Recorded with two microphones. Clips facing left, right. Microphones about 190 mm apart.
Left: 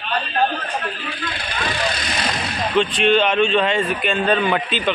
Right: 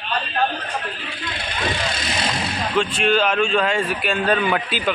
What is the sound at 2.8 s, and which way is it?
Speech, 5° right (ahead or behind).